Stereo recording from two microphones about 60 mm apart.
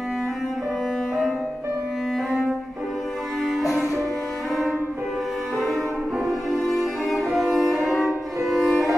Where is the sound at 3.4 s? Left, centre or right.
Centre.